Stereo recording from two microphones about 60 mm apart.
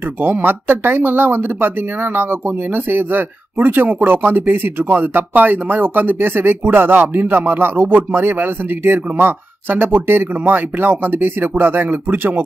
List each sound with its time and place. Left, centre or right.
0.2 s speech: right